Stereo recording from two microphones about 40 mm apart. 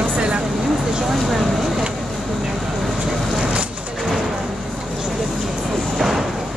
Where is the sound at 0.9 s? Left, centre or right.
Centre.